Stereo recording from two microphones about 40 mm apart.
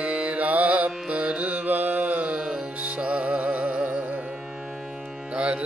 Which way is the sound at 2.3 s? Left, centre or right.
Centre.